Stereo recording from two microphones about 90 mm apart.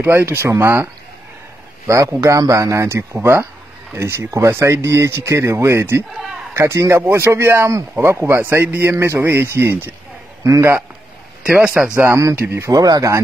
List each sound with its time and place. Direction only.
0.0 s speech: 25° right (ahead or behind)
1.9 s speech: 35° right (ahead or behind)
11.4 s speech: 10° right (ahead or behind)
12.4 s speech: 30° right (ahead or behind)